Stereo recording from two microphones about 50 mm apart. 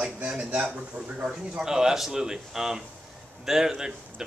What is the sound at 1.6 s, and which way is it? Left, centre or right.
Speech, centre.